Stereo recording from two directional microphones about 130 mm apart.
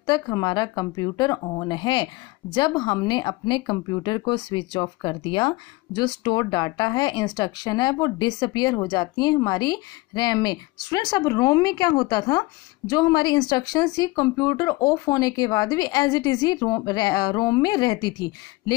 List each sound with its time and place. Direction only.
0.0 s speech: 35° left (ahead or behind)